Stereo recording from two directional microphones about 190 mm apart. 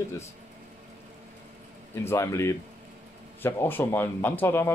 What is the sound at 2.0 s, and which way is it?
Speech, 15° left (ahead or behind).